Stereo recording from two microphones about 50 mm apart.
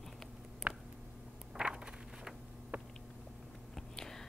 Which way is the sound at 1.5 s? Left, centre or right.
Centre.